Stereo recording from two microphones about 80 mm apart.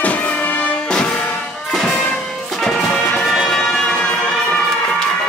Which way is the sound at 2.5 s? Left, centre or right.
Centre.